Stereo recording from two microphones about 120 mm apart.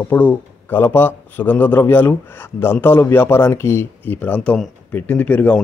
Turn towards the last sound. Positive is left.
turn(degrees=10)  # may be behind; listen again after turning